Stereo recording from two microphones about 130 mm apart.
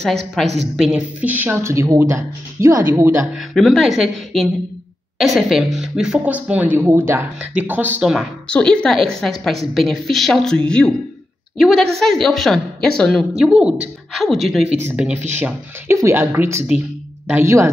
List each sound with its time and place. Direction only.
0.0 s a woman's voice: centre (ahead or behind); by 3.3 s 15° right (ahead or behind)
3.3 s a woman's voice: centre (ahead or behind)
8.5 s a woman's voice: 5° left (ahead or behind); by 15.5 s 10° right (ahead or behind)
15.9 s a woman's voice: 20° right (ahead or behind)